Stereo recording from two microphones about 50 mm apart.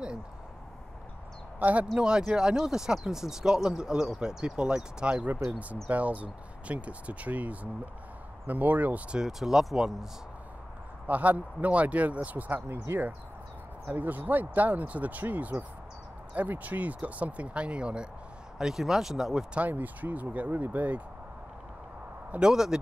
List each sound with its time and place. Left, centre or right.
1.6 s speech: right
2.0 s speech: centre
5.2 s speech: right
9.1 s speech: centre
11.1 s speech: right
12.9 s speech: right
13.9 s speech: right
18.6 s speech: centre
19.7 s speech: right
22.4 s speech: centre